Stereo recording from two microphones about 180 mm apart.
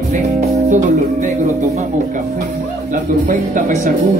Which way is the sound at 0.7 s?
45° right (ahead or behind).